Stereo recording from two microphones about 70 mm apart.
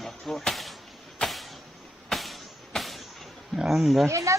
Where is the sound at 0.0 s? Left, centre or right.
Centre.